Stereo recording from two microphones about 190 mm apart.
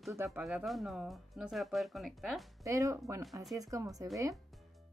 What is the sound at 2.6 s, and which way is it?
A woman's voice, 15° right (ahead or behind).